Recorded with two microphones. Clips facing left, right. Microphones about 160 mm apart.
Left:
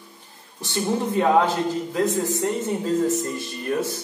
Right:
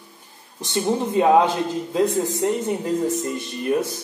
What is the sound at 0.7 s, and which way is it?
A man's voice, 15° right (ahead or behind).